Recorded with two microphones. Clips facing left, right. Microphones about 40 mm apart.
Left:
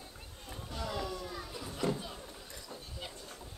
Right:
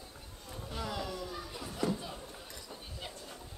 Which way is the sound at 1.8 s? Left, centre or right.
Left.